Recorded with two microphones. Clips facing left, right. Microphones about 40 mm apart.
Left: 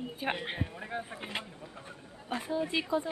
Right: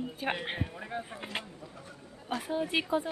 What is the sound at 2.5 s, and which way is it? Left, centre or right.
Speech, right.